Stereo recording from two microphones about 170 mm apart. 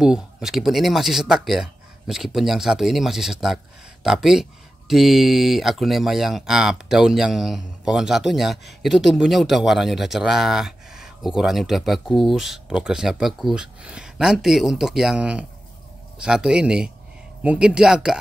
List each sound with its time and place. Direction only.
0.0 s speech: 5° right (ahead or behind)